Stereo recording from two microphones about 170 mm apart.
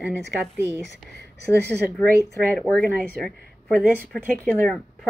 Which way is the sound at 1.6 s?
70° right (ahead or behind).